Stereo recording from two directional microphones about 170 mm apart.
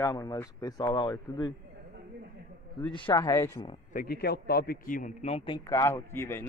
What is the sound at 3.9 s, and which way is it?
A man's voice, 65° left (ahead or behind).